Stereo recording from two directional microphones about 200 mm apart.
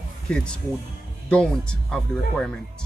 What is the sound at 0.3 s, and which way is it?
Speech, 5° left (ahead or behind).